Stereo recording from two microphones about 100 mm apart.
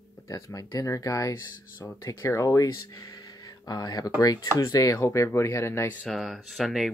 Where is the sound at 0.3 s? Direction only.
35° left (ahead or behind).